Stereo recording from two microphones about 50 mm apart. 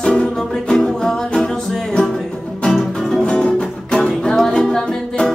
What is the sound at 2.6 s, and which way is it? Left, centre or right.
Music, centre.